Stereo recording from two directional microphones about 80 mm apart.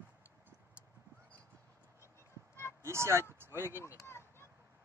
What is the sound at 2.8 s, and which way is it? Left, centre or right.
Speech, right.